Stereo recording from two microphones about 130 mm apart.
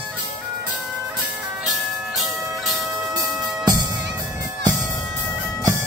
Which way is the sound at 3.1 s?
30° right (ahead or behind).